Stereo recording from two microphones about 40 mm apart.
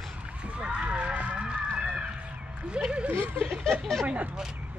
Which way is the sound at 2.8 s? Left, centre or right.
Right.